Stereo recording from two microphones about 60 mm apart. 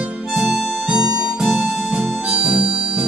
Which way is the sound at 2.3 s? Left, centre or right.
Centre.